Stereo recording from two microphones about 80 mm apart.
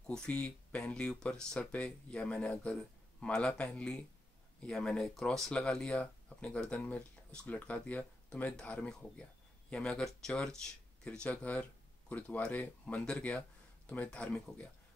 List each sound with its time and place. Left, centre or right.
0.0 s speech: centre